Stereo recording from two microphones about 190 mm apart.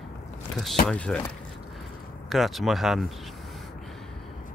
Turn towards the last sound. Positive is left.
turn(degrees=0)  # may be behind; listen again after turning